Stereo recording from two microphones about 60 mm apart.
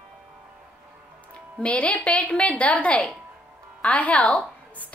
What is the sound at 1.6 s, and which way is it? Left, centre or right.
A woman's voice, left.